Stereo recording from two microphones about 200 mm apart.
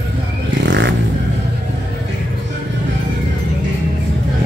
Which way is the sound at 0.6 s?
65° right (ahead or behind).